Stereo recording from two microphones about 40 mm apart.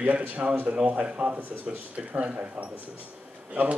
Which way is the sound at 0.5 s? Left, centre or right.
Right.